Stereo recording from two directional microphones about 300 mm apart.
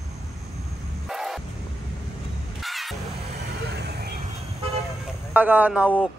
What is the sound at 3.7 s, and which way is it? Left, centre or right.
Vehicle, right.